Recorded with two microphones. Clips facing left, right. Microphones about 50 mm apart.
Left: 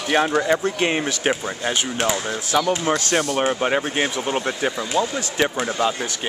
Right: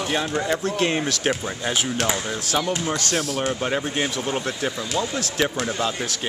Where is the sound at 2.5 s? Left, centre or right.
Centre.